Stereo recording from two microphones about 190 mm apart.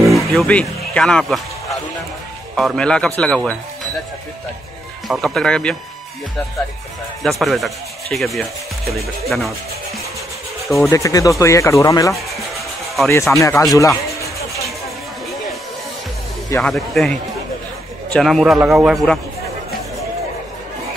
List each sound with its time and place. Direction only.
0.3 s speech: 5° left (ahead or behind)
5.0 s speech: centre (ahead or behind)
7.2 s speech: centre (ahead or behind)
10.9 s speech: 15° left (ahead or behind)
12.2 s music: centre (ahead or behind)
13.4 s speech: 15° left (ahead or behind)
13.7 s music: 15° left (ahead or behind)
16.4 s speech: 10° left (ahead or behind)